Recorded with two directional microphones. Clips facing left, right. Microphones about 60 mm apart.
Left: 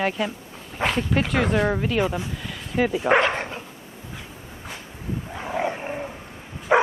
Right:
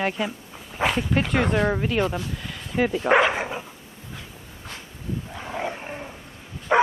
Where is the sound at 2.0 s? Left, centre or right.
Centre.